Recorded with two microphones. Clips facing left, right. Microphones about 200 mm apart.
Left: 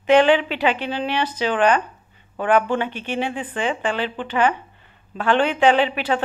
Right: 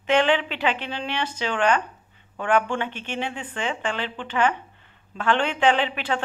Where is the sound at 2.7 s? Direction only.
10° left (ahead or behind).